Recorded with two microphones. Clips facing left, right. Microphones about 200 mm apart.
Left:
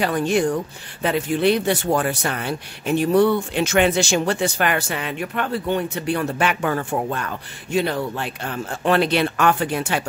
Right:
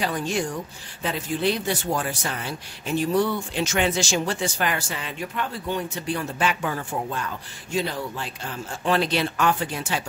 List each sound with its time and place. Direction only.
0.0 s speech: 60° left (ahead or behind)